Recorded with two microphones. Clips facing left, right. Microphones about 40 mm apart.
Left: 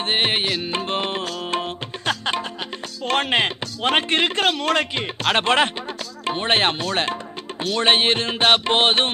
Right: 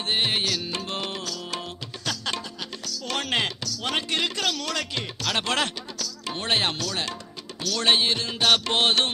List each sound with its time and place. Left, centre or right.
0.0 s music: left
3.1 s speech: left